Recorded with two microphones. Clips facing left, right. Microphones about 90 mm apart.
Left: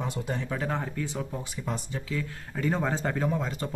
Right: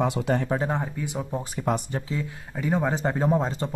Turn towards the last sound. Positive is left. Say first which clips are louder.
# right 6 dB
turn(degrees=-30)  # may be behind; listen again after turning